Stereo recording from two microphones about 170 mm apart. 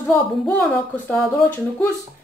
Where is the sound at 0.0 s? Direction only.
15° left (ahead or behind).